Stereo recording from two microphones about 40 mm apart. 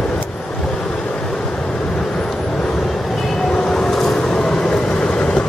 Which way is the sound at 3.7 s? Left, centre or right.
Centre.